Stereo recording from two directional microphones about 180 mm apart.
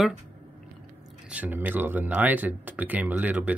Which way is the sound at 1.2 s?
10° right (ahead or behind).